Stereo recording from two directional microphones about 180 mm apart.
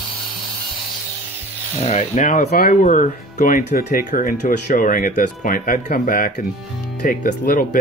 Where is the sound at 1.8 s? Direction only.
40° left (ahead or behind).